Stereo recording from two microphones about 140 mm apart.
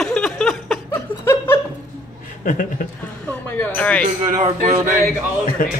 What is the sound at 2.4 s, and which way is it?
Speech, 65° left (ahead or behind).